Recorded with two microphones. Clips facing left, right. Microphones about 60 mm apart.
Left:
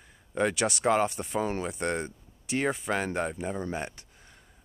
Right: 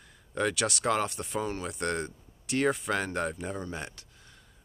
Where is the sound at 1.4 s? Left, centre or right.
Left.